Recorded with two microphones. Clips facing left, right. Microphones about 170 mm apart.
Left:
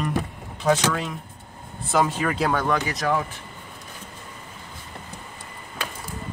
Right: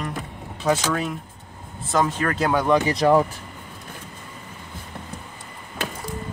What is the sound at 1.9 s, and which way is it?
Speech, 5° left (ahead or behind).